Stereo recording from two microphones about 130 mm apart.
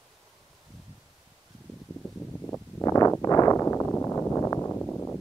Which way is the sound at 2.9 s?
25° left (ahead or behind).